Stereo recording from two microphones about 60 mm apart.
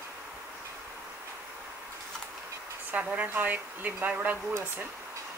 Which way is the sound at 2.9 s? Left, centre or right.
Right.